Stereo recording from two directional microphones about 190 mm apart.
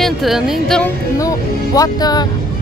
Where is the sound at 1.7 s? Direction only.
20° left (ahead or behind).